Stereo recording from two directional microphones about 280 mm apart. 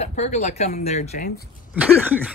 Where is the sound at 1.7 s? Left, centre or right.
Centre.